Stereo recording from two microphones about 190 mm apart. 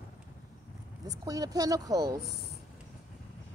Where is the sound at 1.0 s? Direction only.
20° right (ahead or behind).